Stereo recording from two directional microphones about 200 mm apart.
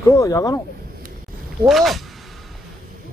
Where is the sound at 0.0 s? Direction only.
15° left (ahead or behind).